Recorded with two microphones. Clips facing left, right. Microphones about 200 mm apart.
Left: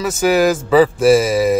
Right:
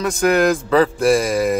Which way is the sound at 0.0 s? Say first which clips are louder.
Left 2 dB; 5° left (ahead or behind).